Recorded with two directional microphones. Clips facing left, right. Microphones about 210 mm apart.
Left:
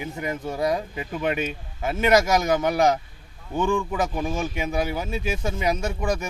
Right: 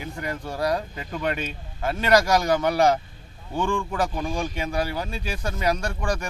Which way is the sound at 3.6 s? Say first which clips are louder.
Left 2 dB; 5° left (ahead or behind).